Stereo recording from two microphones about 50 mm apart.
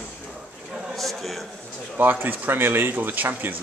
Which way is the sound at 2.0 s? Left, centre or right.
Right.